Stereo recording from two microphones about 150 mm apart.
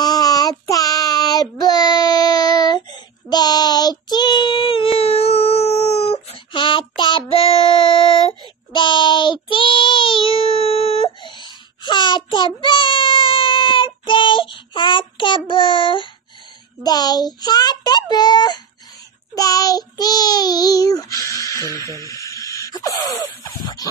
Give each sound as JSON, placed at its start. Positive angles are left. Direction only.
{"t": 0.0, "sound": "child singing", "side_deg": 25}